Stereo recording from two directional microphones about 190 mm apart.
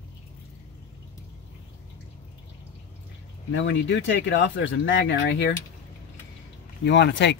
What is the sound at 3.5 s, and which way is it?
Speech, 65° left (ahead or behind).